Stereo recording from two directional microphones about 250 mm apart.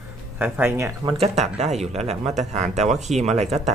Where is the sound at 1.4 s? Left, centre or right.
Right.